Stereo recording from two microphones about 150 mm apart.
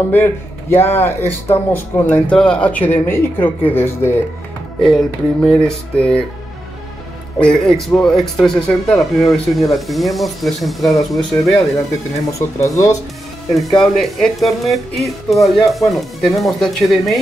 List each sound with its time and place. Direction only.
0.1 s speech: 15° left (ahead or behind)
4.8 s speech: 5° left (ahead or behind)
7.3 s speech: 5° left (ahead or behind)
12.3 s speech: 20° left (ahead or behind)
13.7 s speech: centre (ahead or behind)